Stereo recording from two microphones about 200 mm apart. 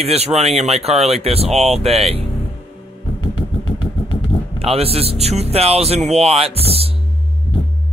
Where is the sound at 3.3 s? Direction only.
25° left (ahead or behind).